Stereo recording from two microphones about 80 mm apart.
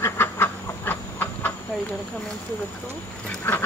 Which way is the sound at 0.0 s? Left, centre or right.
Left.